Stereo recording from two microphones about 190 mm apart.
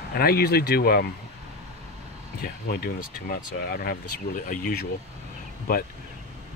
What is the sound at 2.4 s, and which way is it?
Speech, 50° left (ahead or behind).